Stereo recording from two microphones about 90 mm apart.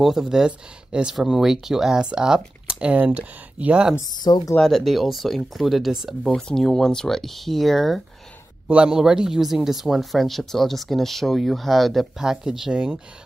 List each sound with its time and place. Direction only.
0.0 s speech: 5° right (ahead or behind)
4.1 s speech: 50° left (ahead or behind)
4.6 s speech: centre (ahead or behind)
8.6 s speech: 10° right (ahead or behind)